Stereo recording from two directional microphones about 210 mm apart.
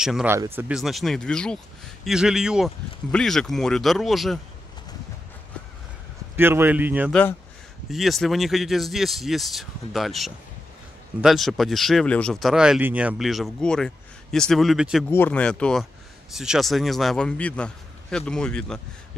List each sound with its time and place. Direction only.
0.0 s speech: 5° right (ahead or behind)
6.3 s a man's voice: 10° right (ahead or behind)
15.0 s speech: 10° left (ahead or behind)